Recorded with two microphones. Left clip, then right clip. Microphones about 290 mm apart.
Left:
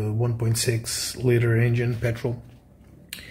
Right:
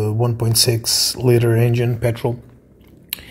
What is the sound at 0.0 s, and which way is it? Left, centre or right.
Speech, centre.